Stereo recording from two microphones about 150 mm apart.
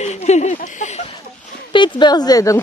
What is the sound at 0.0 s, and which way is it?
Speech, 50° left (ahead or behind).